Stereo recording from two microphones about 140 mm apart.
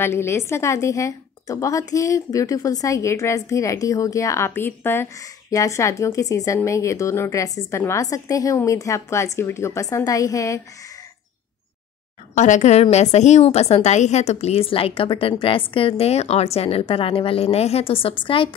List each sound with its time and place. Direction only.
0.0 s a woman's voice: 15° left (ahead or behind)
12.4 s a woman's voice: 60° left (ahead or behind); by 18.5 s 40° left (ahead or behind)